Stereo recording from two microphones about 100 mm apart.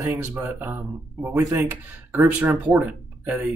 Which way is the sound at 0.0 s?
20° right (ahead or behind).